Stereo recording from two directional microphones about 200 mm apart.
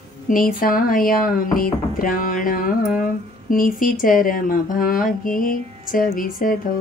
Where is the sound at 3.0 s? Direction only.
45° left (ahead or behind).